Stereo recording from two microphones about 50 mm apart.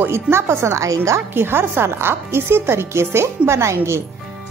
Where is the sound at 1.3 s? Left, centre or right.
Right.